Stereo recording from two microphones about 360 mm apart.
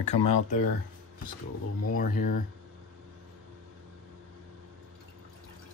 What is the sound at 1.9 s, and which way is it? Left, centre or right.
Speech, left.